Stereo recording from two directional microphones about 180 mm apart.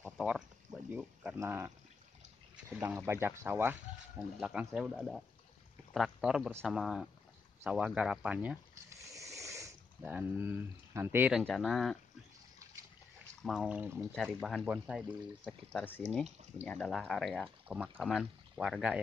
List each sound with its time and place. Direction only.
0.0 s a sound: centre (ahead or behind)
0.9 s speech: 10° right (ahead or behind)
9.1 s a sound: 15° right (ahead or behind)
10.0 s speech: 10° right (ahead or behind)
13.4 s speech: 5° right (ahead or behind)
14.1 s speech: centre (ahead or behind)
15.7 s speech: 10° left (ahead or behind)